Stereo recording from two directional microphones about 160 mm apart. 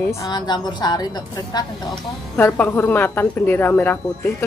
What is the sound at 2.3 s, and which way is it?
Speech, 10° left (ahead or behind).